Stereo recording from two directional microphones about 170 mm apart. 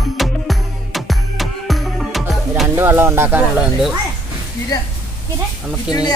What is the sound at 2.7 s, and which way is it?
Speech, 15° right (ahead or behind).